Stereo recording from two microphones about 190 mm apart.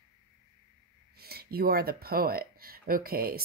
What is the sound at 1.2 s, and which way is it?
Speech, 55° right (ahead or behind).